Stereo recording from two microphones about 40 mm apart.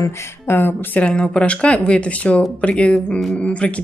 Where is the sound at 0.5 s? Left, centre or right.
Left.